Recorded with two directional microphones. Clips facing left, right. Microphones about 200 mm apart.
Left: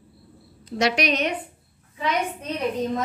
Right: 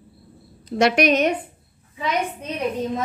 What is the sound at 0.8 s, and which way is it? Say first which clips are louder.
Speech: right 5 dB; 55° right (ahead or behind).